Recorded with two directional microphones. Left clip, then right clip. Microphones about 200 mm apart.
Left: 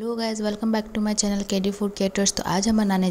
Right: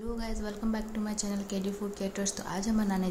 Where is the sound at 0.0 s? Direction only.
40° left (ahead or behind).